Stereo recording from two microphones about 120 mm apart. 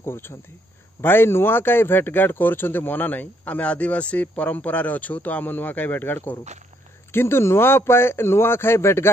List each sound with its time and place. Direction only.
0.0 s a man's voice: 20° left (ahead or behind)